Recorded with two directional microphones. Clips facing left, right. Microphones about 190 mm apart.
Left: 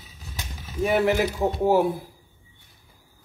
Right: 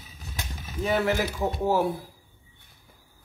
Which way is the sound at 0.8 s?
15° left (ahead or behind).